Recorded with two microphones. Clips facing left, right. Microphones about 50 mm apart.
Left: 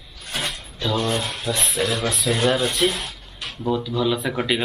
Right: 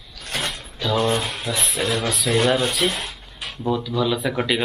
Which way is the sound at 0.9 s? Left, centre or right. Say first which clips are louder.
Right 3 dB; centre.